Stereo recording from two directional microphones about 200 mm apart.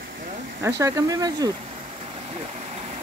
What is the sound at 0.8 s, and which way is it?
Speech, 15° right (ahead or behind).